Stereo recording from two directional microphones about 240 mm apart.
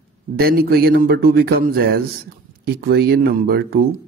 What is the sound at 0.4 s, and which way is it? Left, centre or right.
A man's voice, right.